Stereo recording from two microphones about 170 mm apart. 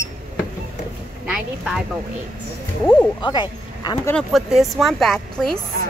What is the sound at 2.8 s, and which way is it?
Speech, 5° left (ahead or behind).